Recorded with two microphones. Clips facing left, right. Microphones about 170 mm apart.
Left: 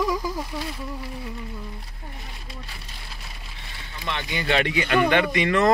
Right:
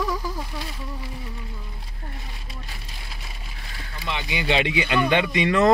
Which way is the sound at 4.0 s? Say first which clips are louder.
Right 1 dB; 10° right (ahead or behind).